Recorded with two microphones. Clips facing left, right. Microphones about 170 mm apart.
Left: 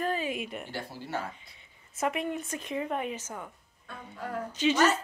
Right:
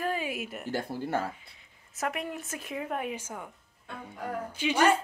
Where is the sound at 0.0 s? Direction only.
10° right (ahead or behind).